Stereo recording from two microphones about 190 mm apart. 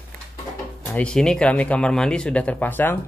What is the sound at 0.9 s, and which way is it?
Speech, 5° left (ahead or behind).